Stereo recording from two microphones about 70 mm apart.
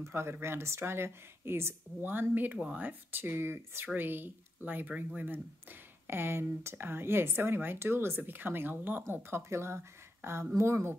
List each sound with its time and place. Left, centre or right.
0.0 s speech: right